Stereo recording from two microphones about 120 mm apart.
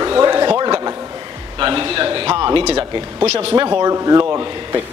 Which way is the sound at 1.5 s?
40° right (ahead or behind).